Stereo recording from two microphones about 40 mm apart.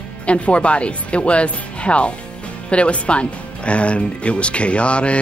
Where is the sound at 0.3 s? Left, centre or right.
Left.